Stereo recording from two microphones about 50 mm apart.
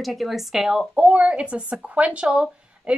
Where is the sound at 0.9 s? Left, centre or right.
Right.